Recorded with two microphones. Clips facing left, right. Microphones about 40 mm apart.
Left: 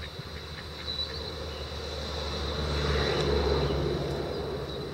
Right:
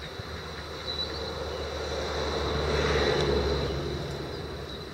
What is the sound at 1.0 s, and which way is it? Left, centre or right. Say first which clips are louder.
Vehicle: right 3 dB; centre.